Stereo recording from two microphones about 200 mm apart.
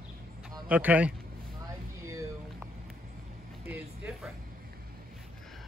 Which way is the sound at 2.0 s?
15° right (ahead or behind).